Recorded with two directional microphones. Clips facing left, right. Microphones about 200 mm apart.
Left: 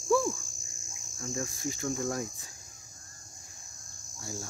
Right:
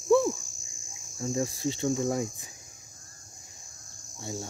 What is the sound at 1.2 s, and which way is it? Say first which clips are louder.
Cricket: right 6 dB; 30° right (ahead or behind).